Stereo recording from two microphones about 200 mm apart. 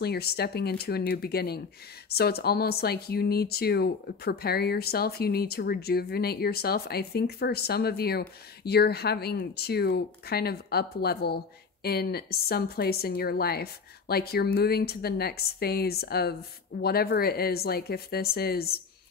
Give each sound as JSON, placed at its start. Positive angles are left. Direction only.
{"t": 0.0, "sound": "speech", "side_deg": 55}